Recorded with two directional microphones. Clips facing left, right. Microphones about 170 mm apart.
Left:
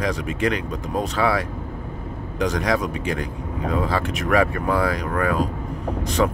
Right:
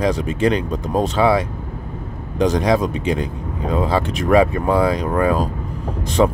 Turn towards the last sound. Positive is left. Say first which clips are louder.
# right 4 dB
turn(degrees=-30)  # may be behind; listen again after turning